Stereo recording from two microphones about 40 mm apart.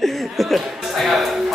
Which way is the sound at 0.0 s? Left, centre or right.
Centre.